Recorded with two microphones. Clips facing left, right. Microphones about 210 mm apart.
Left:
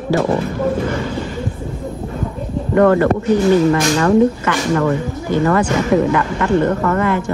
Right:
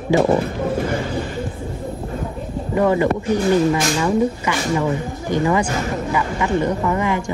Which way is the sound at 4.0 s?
60° left (ahead or behind).